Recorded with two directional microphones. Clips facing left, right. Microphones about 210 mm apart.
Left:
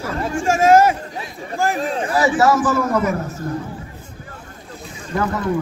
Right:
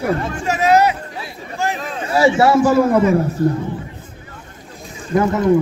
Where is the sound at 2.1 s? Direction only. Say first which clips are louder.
Right 4 dB; 25° right (ahead or behind).